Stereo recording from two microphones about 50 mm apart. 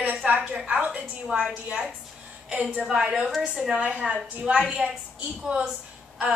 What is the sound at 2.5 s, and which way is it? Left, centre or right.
Speech, right.